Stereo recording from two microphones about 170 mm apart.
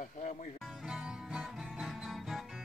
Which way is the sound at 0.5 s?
Centre (ahead or behind).